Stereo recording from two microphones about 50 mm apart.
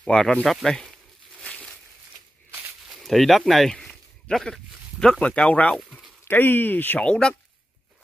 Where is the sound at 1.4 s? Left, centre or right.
Left.